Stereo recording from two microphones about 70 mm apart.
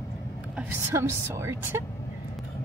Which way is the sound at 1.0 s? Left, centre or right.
Right.